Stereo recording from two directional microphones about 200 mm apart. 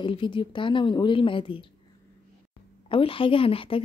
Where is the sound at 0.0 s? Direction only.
25° left (ahead or behind).